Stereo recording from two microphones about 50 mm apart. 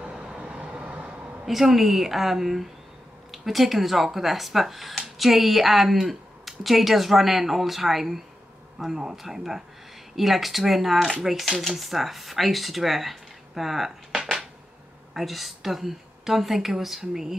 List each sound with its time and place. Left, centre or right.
0.0 s vehicle: right
1.4 s speech: centre